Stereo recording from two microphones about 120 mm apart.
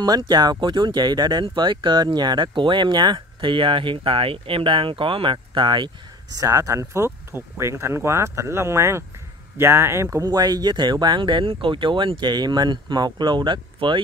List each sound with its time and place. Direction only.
0.0 s speech: 35° right (ahead or behind)
6.3 s speech: 30° right (ahead or behind)
10.2 s speech: 35° right (ahead or behind)